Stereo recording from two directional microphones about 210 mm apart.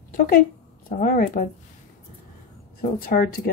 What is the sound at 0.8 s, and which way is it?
Speech, 40° left (ahead or behind).